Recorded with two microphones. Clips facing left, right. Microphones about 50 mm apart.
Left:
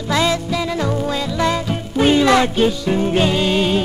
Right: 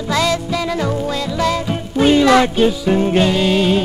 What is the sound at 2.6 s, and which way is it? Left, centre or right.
Music, centre.